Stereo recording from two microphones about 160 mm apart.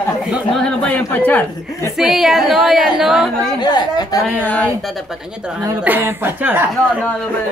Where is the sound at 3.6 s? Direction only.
25° left (ahead or behind).